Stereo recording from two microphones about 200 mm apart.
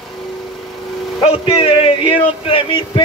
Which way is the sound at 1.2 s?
30° left (ahead or behind).